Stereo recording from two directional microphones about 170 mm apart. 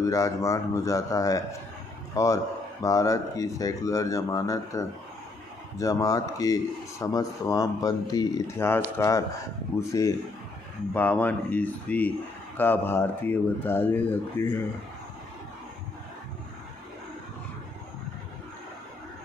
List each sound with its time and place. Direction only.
0.0 s speech: 20° left (ahead or behind)